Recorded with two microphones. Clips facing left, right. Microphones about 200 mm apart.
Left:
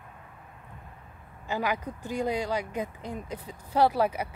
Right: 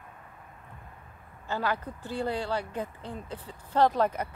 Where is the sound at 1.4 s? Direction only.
15° left (ahead or behind).